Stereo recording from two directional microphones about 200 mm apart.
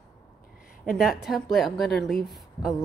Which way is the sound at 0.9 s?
Centre (ahead or behind).